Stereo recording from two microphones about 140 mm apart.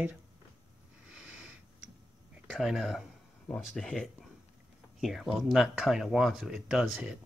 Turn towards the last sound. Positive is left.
turn(degrees=-5)  # may be behind; listen again after turning